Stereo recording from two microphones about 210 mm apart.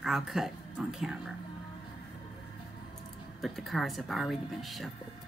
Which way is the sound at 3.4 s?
Centre (ahead or behind).